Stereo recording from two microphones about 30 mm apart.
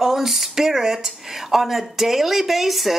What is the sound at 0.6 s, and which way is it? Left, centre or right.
Speech, centre.